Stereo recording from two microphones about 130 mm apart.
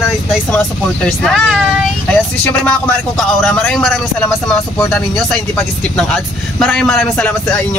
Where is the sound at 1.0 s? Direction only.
Centre (ahead or behind).